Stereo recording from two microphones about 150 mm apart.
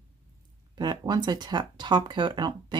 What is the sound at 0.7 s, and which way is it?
Speech, 30° right (ahead or behind).